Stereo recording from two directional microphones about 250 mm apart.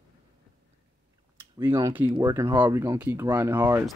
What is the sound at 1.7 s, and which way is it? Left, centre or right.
Speech, centre.